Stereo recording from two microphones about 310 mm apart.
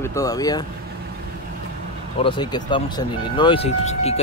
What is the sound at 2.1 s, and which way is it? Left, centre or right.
Speech, centre.